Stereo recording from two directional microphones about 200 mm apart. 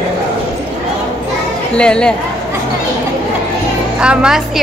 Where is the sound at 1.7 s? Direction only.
5° left (ahead or behind).